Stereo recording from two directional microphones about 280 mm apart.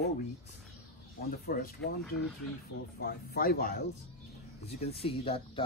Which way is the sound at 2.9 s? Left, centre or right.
Left.